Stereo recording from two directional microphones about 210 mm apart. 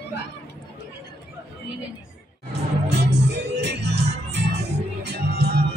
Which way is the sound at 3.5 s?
55° right (ahead or behind).